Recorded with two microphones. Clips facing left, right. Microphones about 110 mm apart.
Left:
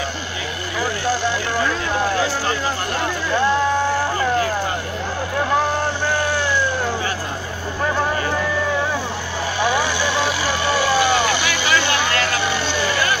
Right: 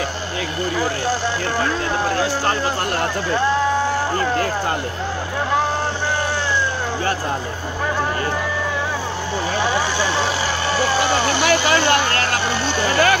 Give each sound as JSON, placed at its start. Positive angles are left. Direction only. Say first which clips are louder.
{"t": 9.6, "sound": "vehicle", "louder": "left 2 dB", "side_deg": -30}